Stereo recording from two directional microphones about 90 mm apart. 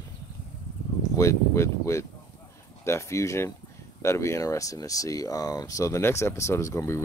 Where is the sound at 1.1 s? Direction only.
35° left (ahead or behind).